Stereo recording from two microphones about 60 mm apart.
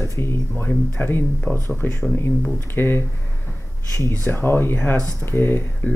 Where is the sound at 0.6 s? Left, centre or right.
Left.